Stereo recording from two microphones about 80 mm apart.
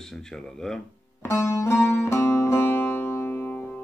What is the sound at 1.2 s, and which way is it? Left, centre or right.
Music, left.